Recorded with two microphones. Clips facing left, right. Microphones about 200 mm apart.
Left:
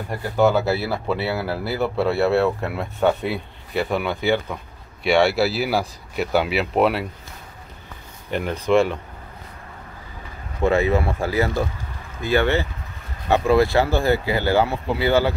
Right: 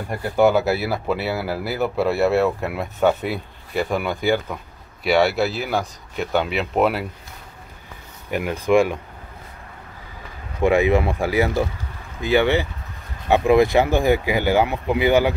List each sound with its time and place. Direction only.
0.4 s speech: 10° right (ahead or behind)
8.3 s speech: 10° right (ahead or behind)
10.6 s speech: 15° right (ahead or behind)